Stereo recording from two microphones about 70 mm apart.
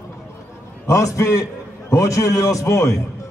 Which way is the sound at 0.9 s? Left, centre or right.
Left.